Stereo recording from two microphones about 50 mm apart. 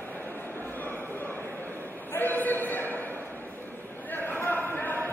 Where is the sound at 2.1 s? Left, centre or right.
Left.